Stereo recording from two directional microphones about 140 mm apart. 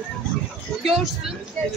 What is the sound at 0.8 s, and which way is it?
Speech, centre (ahead or behind).